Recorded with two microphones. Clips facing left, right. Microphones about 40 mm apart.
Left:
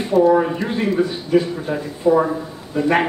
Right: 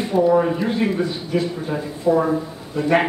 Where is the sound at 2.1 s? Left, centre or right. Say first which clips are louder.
Left 2 dB; left.